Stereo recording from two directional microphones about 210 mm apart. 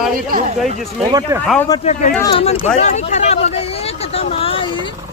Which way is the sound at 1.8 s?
35° left (ahead or behind).